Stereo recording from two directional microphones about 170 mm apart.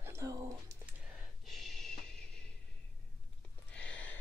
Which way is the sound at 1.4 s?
Centre (ahead or behind).